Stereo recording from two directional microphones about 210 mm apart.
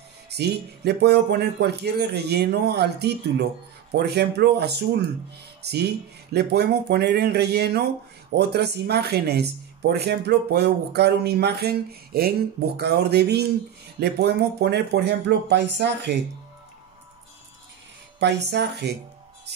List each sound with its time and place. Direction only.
0.3 s speech: 50° right (ahead or behind)
18.2 s speech: 55° right (ahead or behind)